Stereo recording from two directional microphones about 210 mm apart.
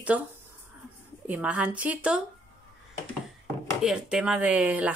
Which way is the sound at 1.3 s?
5° right (ahead or behind).